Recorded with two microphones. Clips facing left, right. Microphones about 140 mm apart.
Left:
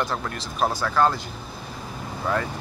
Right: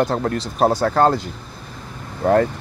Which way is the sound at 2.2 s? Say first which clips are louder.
Right 10 dB; 50° right (ahead or behind).